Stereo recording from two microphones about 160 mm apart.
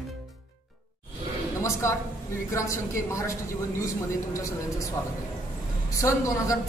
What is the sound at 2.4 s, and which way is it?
Speech, 20° left (ahead or behind).